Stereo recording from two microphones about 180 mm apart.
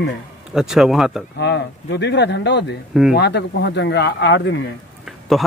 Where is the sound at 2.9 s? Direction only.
5° right (ahead or behind).